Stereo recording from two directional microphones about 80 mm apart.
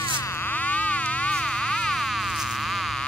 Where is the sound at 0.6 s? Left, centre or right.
Centre.